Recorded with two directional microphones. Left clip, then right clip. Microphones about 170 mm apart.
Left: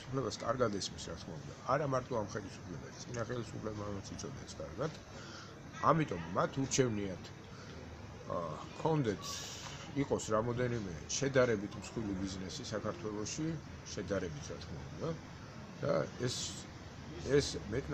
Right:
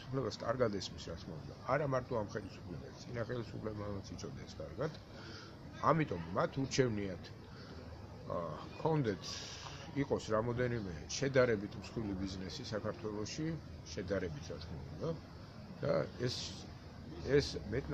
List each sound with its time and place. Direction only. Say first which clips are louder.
0.1 s a man's voice: left 1 dB; 5° right (ahead or behind)
4.8 s a man's voice: even; centre (ahead or behind)
8.3 s a man's voice: left 1 dB; centre (ahead or behind)
15.8 s a man's voice: left 1 dB; 5° right (ahead or behind)